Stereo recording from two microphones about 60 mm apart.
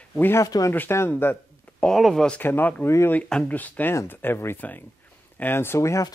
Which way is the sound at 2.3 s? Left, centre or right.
Left.